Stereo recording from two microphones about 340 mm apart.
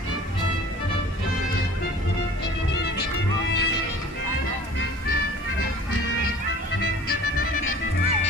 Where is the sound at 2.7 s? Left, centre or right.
Left.